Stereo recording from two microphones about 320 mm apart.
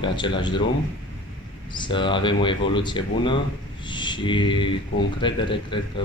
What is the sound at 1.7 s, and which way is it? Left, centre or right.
Speech, centre.